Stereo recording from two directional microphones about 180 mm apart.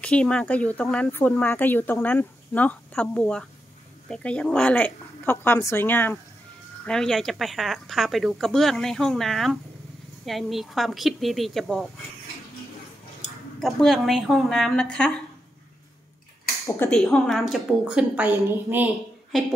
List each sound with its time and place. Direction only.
0.0 s speech: 5° left (ahead or behind)
13.6 s speech: centre (ahead or behind)
16.6 s speech: 15° left (ahead or behind)
16.9 s speech: centre (ahead or behind)